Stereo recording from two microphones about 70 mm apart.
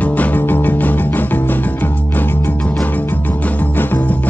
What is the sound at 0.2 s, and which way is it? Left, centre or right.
Music, left.